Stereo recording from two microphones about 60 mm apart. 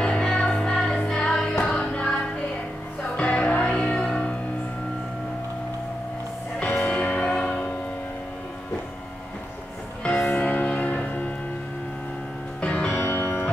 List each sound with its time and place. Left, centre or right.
0.0 s music: centre
6.6 s music: left
10.3 s music: left
12.6 s music: left
12.9 s music: left